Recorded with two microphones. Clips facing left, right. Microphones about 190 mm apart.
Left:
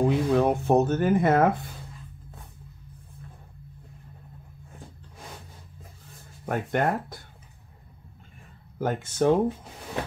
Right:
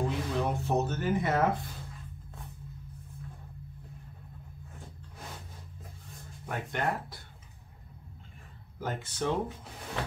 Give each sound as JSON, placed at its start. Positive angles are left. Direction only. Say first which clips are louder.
{"t": 0.0, "sound": "speech", "louder": "left 9 dB", "side_deg": 60}
{"t": 6.4, "sound": "speech", "louder": "left 7 dB", "side_deg": 50}
{"t": 8.7, "sound": "speech", "louder": "left 9 dB", "side_deg": 50}